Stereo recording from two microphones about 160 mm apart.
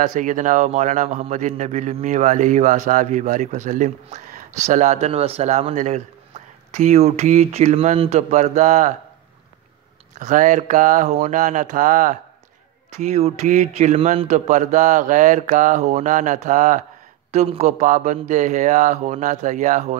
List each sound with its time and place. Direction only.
0.0 s a man's voice: 55° right (ahead or behind)
10.1 s a man's voice: 50° right (ahead or behind)
13.0 s a man's voice: 45° right (ahead or behind)